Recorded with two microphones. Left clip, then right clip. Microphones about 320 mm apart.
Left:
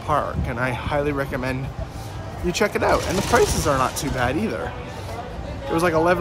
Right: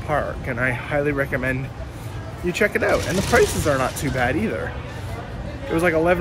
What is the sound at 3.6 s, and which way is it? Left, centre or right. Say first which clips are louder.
Speech: even; centre.